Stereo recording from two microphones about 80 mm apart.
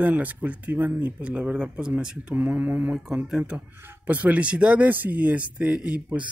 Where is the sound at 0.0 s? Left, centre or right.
Right.